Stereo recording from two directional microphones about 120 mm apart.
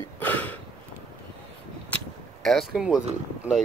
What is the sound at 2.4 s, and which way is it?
Speech, centre (ahead or behind).